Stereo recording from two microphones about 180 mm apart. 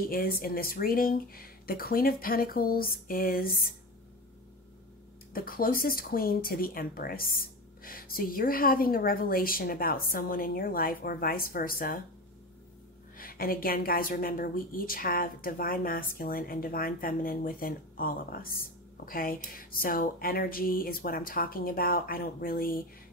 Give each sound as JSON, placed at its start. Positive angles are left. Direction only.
{"t": 0.0, "sound": "speech", "side_deg": 55}
{"t": 5.3, "sound": "speech", "side_deg": 55}
{"t": 13.2, "sound": "speech", "side_deg": 55}